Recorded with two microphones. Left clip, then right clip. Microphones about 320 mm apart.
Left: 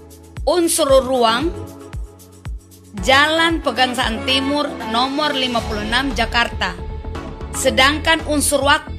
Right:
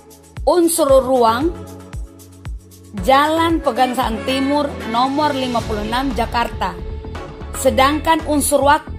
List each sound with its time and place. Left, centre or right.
0.8 s a woman's voice: centre
3.0 s a woman's voice: centre